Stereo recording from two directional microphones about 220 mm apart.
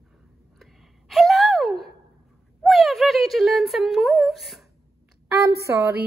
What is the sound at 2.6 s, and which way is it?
Speech, centre (ahead or behind).